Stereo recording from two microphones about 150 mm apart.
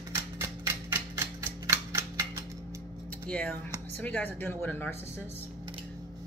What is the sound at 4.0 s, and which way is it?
Speech, 10° left (ahead or behind).